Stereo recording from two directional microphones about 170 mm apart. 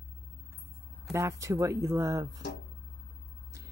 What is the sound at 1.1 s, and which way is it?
Speech, 20° right (ahead or behind).